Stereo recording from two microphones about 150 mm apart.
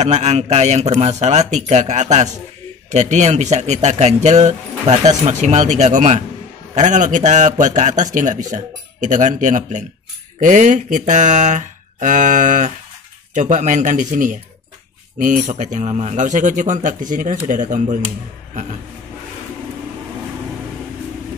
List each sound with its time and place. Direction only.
0.0 s a man's voice: 50° right (ahead or behind)